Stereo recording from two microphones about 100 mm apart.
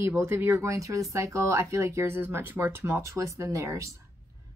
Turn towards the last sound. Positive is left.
turn(degrees=-30)  # may be behind; listen again after turning